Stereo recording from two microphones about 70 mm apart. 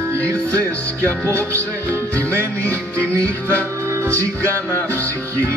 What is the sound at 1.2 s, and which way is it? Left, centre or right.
Music, right.